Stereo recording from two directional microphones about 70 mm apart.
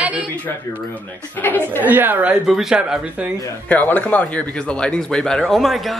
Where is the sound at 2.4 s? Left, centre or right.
Centre.